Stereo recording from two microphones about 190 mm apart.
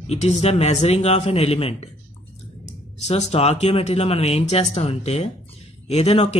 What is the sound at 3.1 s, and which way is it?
A man's voice, 35° left (ahead or behind).